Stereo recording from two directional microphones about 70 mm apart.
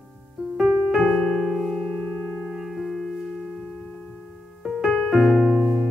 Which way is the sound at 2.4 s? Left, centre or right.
Centre.